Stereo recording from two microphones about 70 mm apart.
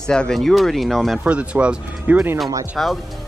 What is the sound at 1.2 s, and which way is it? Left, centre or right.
Speech, centre.